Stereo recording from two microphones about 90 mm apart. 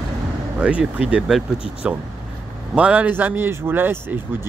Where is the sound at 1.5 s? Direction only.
90° left.